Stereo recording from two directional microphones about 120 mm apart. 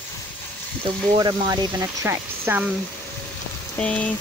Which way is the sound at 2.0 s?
15° right (ahead or behind).